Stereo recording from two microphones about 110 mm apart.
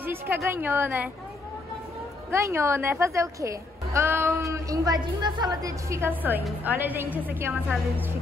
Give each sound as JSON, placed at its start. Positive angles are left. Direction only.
{"t": 0.0, "sound": "a sound", "side_deg": -20}
{"t": 0.5, "sound": "a woman's voice", "side_deg": -20}
{"t": 2.3, "sound": "a woman's voice", "side_deg": -25}
{"t": 4.5, "sound": "a woman's voice", "side_deg": -30}